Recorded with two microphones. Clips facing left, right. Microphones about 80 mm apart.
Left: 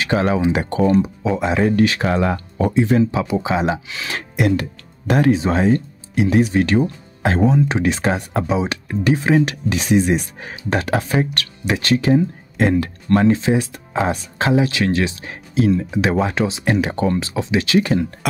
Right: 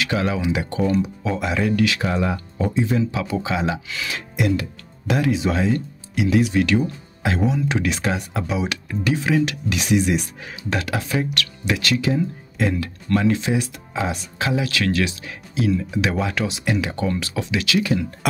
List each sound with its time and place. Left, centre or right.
0.0 s speech: left
1.4 s speech: left
2.0 s speech: left
3.0 s speech: left
4.1 s speech: left
12.0 s speech: left
13.9 s speech: left
14.5 s speech: left